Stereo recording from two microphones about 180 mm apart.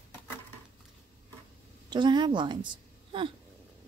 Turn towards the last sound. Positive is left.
turn(degrees=-25)  # may be behind; listen again after turning